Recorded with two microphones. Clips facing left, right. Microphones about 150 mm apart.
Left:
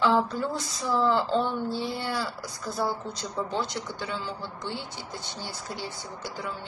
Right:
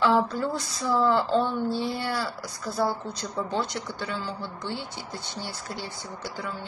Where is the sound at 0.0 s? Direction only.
20° left (ahead or behind).